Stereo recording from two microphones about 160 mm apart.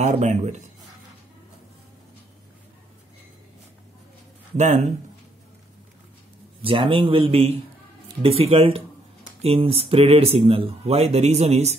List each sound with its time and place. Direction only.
0.0 s speech: 45° right (ahead or behind)
4.6 s speech: 50° right (ahead or behind)
6.6 s speech: 35° right (ahead or behind)